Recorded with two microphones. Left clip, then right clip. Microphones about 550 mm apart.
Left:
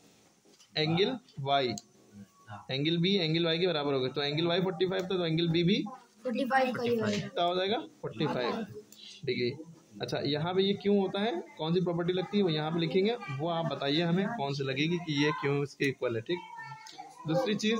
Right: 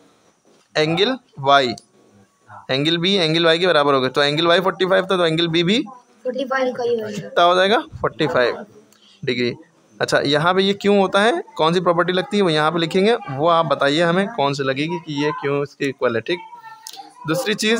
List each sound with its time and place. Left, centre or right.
0.7 s speech: left